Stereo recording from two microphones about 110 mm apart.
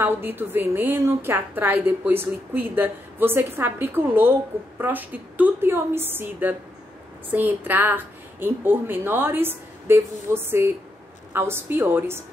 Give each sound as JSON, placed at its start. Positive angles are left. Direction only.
{"t": 0.0, "sound": "a woman's voice", "side_deg": -20}